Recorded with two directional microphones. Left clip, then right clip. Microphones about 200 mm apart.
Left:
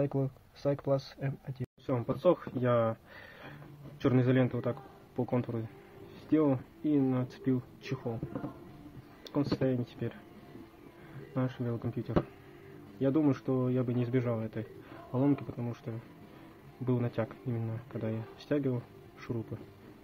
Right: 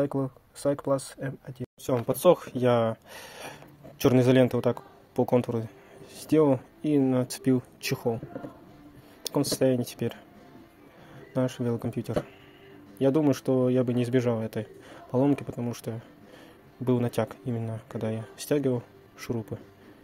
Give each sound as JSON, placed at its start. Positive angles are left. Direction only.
{"t": 0.0, "sound": "speech", "side_deg": -15}
{"t": 1.9, "sound": "a man's voice", "side_deg": -25}
{"t": 9.2, "sound": "speech", "side_deg": -30}
{"t": 11.3, "sound": "a man's voice", "side_deg": -30}